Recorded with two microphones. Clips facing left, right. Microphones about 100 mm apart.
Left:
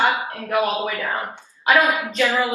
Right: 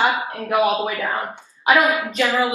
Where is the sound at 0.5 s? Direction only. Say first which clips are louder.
Right 2 dB; 15° right (ahead or behind).